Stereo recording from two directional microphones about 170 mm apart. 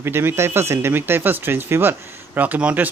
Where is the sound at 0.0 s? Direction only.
15° right (ahead or behind).